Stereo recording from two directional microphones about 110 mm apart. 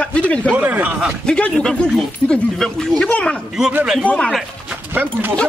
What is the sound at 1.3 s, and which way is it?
Speech, 10° left (ahead or behind).